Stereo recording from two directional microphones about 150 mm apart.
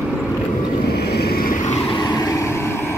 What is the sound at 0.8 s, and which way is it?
Vehicle, 90° left.